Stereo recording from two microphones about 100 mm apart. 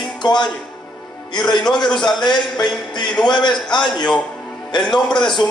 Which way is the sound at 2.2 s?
45° left (ahead or behind).